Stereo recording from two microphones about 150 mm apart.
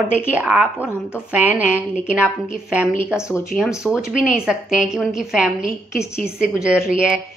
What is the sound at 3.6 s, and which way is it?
A woman's voice, 5° right (ahead or behind).